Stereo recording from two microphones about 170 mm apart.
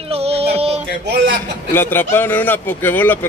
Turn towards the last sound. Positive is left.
turn(degrees=10)  # may be behind; listen again after turning